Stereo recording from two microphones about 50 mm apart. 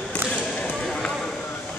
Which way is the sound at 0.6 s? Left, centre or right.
Centre.